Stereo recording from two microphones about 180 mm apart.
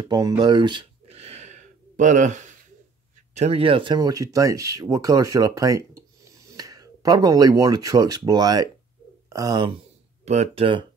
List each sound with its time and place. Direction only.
0.0 s a sound: 25° right (ahead or behind); by 2.5 s 40° right (ahead or behind)
3.3 s speech: 35° right (ahead or behind)
10.2 s speech: 40° right (ahead or behind)